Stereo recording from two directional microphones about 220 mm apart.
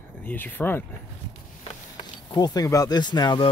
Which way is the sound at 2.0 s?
20° left (ahead or behind).